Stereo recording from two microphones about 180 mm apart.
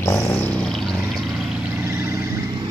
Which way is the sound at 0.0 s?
15° left (ahead or behind).